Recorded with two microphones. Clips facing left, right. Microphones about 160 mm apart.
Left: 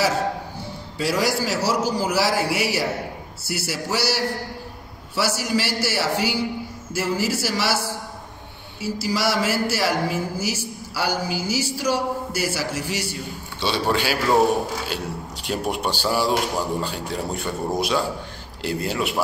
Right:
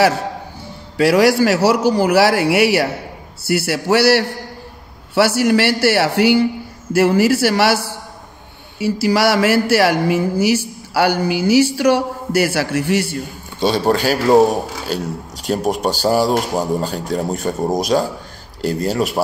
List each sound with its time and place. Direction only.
0.9 s a man's voice: 70° right (ahead or behind); by 19.2 s 40° right (ahead or behind)